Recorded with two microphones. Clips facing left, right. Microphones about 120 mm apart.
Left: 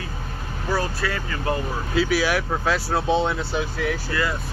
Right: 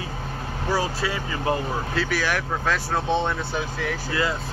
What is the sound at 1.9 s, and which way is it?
Speech, 10° left (ahead or behind).